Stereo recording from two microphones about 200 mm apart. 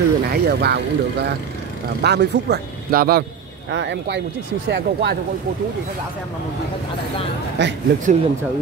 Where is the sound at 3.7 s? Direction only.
60° right (ahead or behind).